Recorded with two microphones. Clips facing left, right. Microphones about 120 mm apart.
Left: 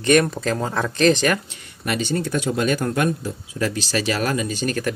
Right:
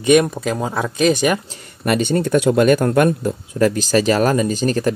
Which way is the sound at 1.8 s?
55° right (ahead or behind).